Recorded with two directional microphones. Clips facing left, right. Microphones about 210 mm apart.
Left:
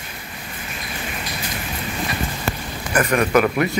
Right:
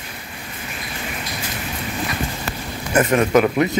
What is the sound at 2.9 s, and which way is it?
Speech, 20° right (ahead or behind).